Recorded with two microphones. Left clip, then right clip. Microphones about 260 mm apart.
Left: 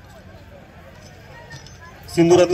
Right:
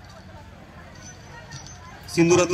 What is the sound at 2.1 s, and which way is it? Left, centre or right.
Speech, centre.